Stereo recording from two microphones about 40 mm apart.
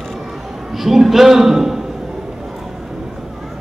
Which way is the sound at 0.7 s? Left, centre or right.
Centre.